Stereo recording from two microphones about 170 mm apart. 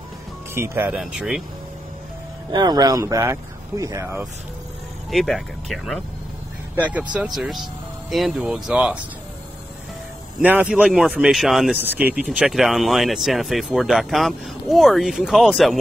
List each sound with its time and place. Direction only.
0.6 s speech: 10° right (ahead or behind)
2.5 s speech: 25° right (ahead or behind)
5.1 s speech: centre (ahead or behind)
10.4 s speech: 10° right (ahead or behind)